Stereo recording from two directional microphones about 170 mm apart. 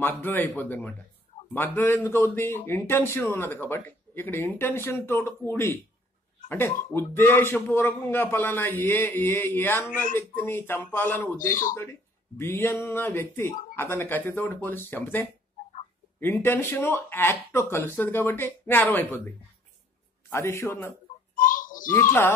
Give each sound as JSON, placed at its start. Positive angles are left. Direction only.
{"t": 0.0, "sound": "speech", "side_deg": 10}
{"t": 20.2, "sound": "speech", "side_deg": 15}
{"t": 21.4, "sound": "a sound", "side_deg": 50}